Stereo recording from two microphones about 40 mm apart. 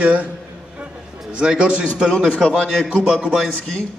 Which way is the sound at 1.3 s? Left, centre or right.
Right.